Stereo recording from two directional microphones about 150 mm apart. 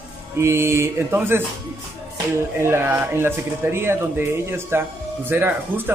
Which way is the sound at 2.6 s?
15° right (ahead or behind).